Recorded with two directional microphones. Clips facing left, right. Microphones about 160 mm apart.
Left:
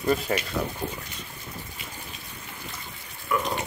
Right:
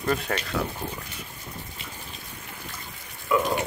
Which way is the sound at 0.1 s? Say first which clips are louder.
Left 2 dB; 5° left (ahead or behind).